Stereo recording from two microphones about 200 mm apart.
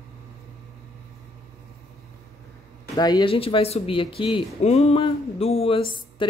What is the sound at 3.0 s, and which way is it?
Speech, 20° left (ahead or behind).